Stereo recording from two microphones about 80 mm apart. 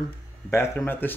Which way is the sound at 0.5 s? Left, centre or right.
Left.